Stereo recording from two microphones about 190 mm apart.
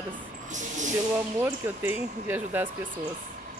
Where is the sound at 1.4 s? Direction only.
10° right (ahead or behind).